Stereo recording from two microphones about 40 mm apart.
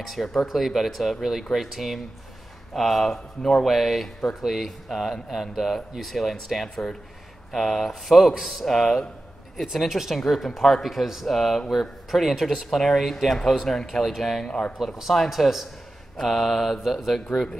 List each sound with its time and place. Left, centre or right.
0.0 s speech: centre
8.6 s speech: centre
14.4 s speech: centre
15.0 s speech: centre